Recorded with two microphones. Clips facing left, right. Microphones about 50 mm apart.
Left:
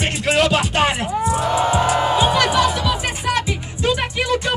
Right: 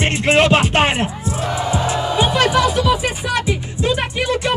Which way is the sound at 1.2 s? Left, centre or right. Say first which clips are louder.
Left 4 dB; left.